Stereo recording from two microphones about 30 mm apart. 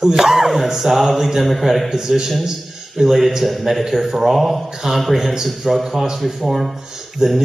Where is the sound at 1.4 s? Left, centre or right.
Centre.